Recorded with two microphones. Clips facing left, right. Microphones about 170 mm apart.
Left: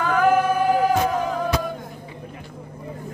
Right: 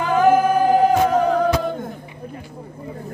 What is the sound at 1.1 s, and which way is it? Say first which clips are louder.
Music: right 7 dB; 45° right (ahead or behind).